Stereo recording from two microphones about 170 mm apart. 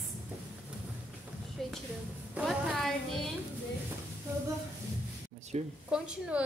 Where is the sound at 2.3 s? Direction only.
Centre (ahead or behind).